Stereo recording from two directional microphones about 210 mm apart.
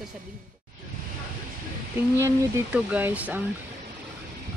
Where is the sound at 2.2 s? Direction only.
5° right (ahead or behind).